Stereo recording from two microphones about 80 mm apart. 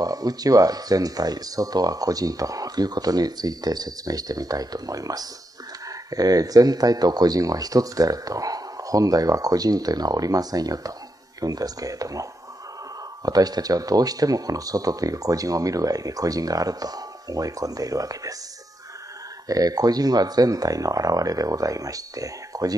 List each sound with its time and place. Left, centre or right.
0.0 s speech: right
19.4 s speech: right